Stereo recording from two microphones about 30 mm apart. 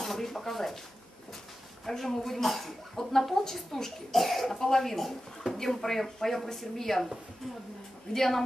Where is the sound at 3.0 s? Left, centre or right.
Centre.